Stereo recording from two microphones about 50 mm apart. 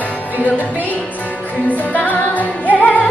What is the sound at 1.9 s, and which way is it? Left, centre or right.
Music, left.